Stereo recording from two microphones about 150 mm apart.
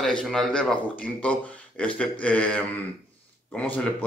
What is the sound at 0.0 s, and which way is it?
A man's voice, 5° left (ahead or behind).